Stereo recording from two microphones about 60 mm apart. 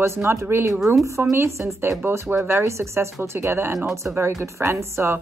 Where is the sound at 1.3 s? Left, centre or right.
Right.